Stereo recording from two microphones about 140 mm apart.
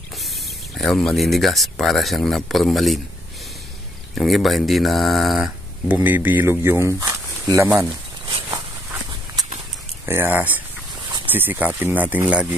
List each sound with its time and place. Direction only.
0.7 s speech: 5° left (ahead or behind)
4.1 s speech: centre (ahead or behind)
5.9 s speech: 15° right (ahead or behind)
10.0 s speech: 15° right (ahead or behind)